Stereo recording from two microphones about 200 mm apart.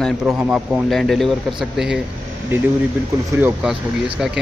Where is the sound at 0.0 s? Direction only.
Centre (ahead or behind).